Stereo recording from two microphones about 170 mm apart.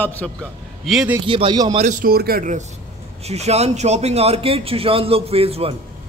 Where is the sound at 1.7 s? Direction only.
50° right (ahead or behind).